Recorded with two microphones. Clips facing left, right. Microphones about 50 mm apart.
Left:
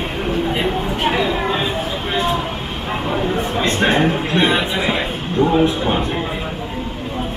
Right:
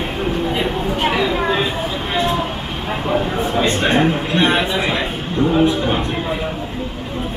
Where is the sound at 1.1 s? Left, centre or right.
Left.